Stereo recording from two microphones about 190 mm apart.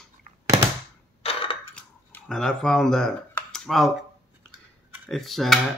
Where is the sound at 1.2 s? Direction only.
30° left (ahead or behind).